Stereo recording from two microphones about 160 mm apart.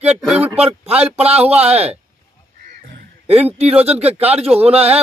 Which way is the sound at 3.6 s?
40° right (ahead or behind).